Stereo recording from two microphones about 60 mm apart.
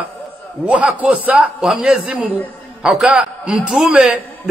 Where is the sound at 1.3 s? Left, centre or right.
Centre.